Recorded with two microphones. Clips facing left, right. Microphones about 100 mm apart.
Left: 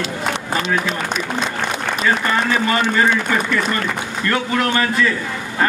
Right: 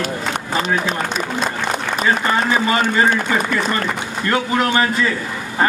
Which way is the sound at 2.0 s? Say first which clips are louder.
Right 1 dB; 25° right (ahead or behind).